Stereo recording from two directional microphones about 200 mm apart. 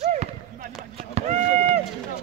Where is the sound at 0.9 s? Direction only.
30° right (ahead or behind).